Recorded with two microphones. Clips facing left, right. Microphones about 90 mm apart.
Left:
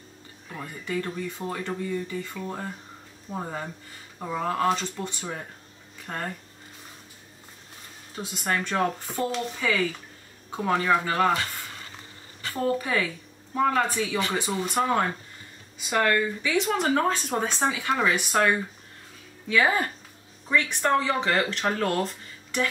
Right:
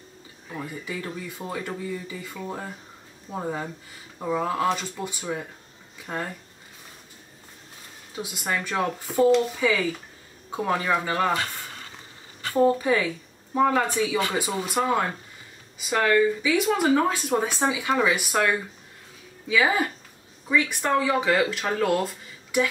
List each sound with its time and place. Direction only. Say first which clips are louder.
0.5 s speech: even; 5° right (ahead or behind)
8.2 s speech: even; 5° right (ahead or behind)
10.5 s speech: left 1 dB; 5° right (ahead or behind)
12.6 s speech: right 3 dB; 15° right (ahead or behind)